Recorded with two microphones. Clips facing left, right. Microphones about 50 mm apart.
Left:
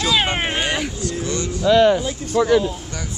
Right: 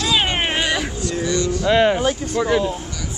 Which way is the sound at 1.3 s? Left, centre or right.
Left.